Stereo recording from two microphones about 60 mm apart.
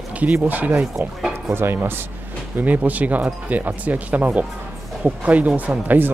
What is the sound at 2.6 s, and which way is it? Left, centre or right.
Speech, right.